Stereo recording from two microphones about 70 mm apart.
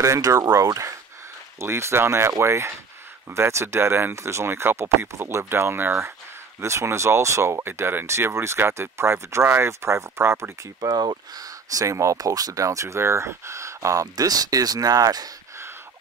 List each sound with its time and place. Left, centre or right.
0.0 s speech: right
10.8 s speech: right
14.1 s speech: right